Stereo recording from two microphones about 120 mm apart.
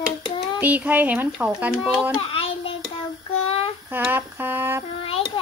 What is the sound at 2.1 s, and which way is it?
Child singing, 50° left (ahead or behind).